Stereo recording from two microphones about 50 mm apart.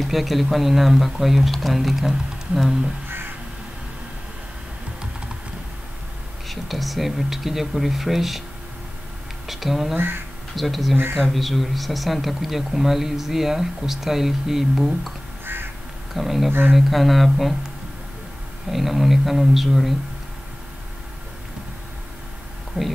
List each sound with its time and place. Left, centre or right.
0.0 s speech: centre
6.5 s speech: centre
9.5 s speech: centre
9.9 s speech: right
10.5 s speech: centre
16.2 s speech: centre
18.7 s speech: centre
22.8 s speech: centre